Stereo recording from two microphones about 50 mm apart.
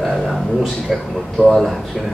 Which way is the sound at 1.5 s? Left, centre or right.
Centre.